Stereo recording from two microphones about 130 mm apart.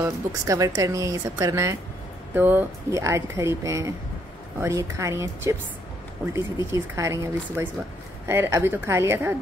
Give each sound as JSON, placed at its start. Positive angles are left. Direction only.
{"t": 0.0, "sound": "speech", "side_deg": -25}